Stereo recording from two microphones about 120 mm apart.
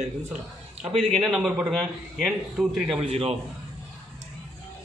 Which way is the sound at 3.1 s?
60° right (ahead or behind).